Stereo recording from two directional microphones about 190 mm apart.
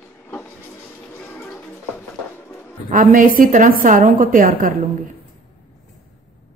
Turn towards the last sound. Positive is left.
turn(degrees=-45)  # may be behind; listen again after turning